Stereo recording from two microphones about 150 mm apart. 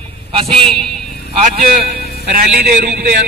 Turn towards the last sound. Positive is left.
turn(degrees=-90)